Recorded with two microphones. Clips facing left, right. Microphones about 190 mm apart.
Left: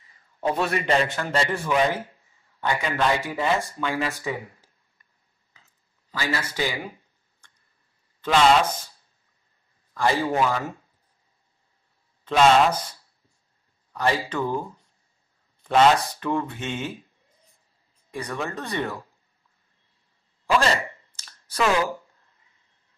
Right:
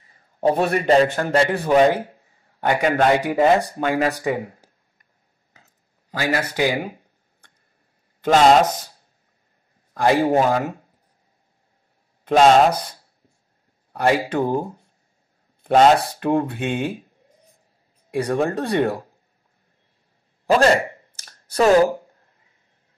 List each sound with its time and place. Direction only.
0.1 s a sound: 45° right (ahead or behind)
1.0 s a man's voice: 55° right (ahead or behind)
1.6 s speech: 40° right (ahead or behind)
5.5 s a sound: 50° right (ahead or behind)
6.7 s speech: 50° right (ahead or behind)
8.3 s speech: 40° right (ahead or behind)
10.2 s speech: 45° right (ahead or behind)
12.3 s speech: 40° right (ahead or behind)
14.2 s speech: 50° right (ahead or behind)
18.1 s speech: 55° right (ahead or behind)
20.4 s speech: 45° right (ahead or behind)
21.3 s a sound: 40° right (ahead or behind)